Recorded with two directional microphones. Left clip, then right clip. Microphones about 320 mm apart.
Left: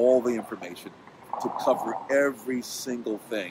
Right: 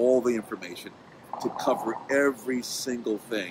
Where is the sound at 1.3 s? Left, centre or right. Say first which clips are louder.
Left 2 dB; left.